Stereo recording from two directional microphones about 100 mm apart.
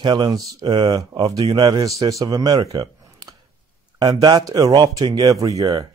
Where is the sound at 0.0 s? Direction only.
50° right (ahead or behind).